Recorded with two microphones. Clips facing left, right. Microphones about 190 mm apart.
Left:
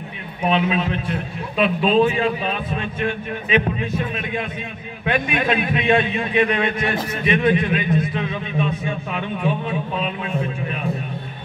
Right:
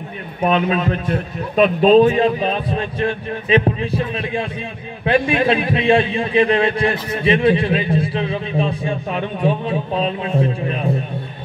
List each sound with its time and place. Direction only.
0.4 s a man's voice: 45° right (ahead or behind)